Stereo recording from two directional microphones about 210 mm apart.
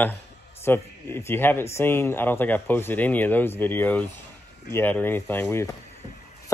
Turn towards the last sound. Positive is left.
turn(degrees=10)  # may be behind; listen again after turning